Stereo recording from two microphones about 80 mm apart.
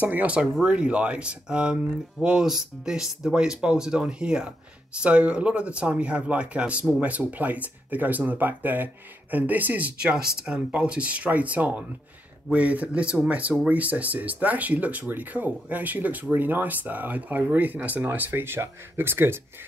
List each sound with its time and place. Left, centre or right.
0.0 s speech: centre